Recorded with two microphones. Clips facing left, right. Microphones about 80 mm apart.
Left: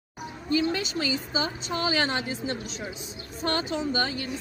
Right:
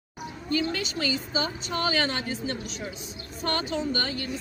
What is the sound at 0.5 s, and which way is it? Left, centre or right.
A woman's voice, centre.